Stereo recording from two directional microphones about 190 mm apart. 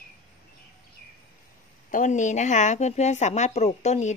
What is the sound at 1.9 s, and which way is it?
A woman's voice, 40° left (ahead or behind).